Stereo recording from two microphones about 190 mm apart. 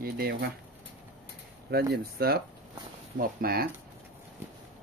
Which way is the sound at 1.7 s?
55° right (ahead or behind).